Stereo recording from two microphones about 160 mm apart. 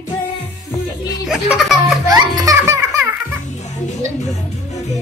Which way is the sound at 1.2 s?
5° right (ahead or behind).